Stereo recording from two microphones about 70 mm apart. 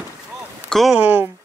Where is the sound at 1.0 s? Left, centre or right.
Right.